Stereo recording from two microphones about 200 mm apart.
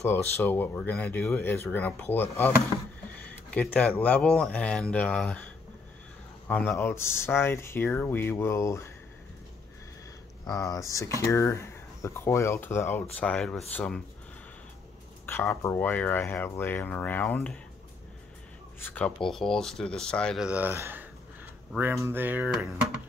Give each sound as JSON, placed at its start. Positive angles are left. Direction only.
{"t": 0.0, "sound": "speech", "side_deg": 10}
{"t": 3.3, "sound": "a sound", "side_deg": 5}
{"t": 4.0, "sound": "speech", "side_deg": 5}
{"t": 6.4, "sound": "speech", "side_deg": 10}
{"t": 10.4, "sound": "speech", "side_deg": 15}
{"t": 15.2, "sound": "speech", "side_deg": 15}
{"t": 18.8, "sound": "speech", "side_deg": 10}